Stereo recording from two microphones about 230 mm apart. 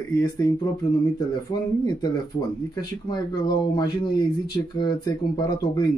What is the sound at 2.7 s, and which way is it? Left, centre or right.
Speech, centre.